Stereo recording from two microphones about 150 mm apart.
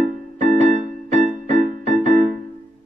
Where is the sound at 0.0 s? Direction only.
50° right (ahead or behind).